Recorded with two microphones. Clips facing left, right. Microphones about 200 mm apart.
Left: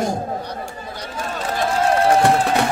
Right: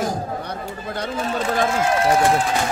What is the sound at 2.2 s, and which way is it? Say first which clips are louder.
Run: left 2 dB; 65° left (ahead or behind).